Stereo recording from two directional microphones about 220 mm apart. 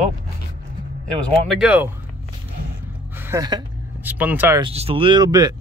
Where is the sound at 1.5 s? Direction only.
5° right (ahead or behind).